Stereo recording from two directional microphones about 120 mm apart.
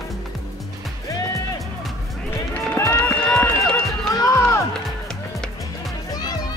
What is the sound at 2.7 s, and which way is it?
Run, 20° left (ahead or behind).